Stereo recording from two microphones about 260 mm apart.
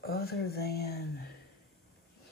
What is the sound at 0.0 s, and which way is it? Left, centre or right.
Speech, left.